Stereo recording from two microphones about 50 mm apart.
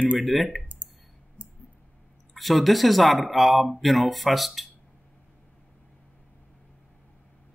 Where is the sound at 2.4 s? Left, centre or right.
Centre.